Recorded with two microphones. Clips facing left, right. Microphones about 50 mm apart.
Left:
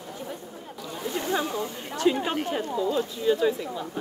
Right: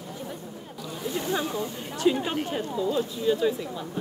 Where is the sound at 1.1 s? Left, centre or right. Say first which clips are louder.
Left 1 dB; left.